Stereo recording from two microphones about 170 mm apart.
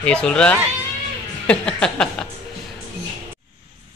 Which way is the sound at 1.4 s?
5° left (ahead or behind).